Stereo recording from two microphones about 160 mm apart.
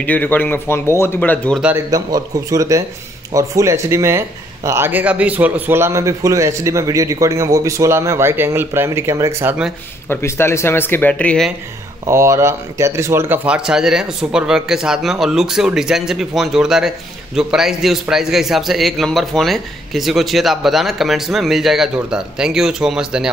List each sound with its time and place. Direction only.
0.0 s speech: 10° left (ahead or behind)
1.9 s a man's voice: 20° right (ahead or behind)
10.0 s speech: 15° left (ahead or behind)
12.1 s a man's voice: 15° right (ahead or behind)